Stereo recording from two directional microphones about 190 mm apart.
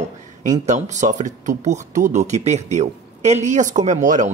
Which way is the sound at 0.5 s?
40° right (ahead or behind).